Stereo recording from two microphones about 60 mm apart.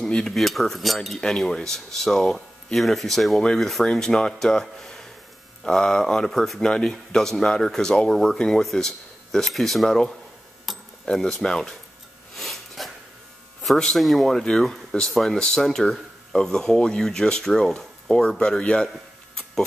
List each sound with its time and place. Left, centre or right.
0.0 s speech: centre
10.6 s a sound: centre
13.6 s speech: centre